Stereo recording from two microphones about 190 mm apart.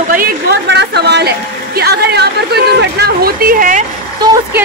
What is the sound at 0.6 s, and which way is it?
A woman's voice, 60° right (ahead or behind).